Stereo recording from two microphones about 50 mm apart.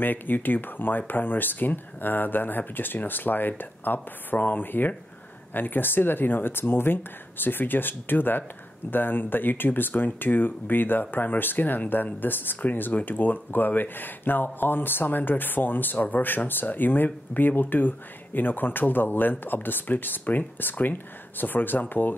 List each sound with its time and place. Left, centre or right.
0.0 s speech: left